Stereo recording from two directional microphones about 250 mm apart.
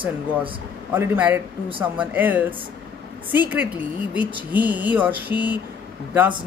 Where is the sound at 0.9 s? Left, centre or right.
Centre.